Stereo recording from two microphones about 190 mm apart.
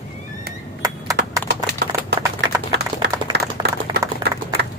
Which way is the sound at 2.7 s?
65° right (ahead or behind).